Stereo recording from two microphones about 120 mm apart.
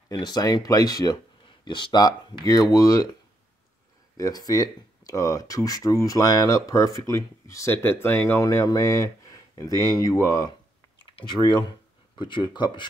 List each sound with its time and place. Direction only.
0.1 s speech: 35° left (ahead or behind)
4.2 s speech: 30° left (ahead or behind)
11.1 s speech: 40° left (ahead or behind)